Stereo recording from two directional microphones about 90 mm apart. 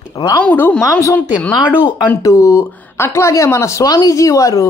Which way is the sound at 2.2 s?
35° left (ahead or behind).